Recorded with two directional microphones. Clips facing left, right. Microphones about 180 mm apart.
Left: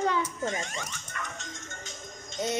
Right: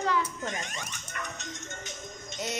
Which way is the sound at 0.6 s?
20° right (ahead or behind).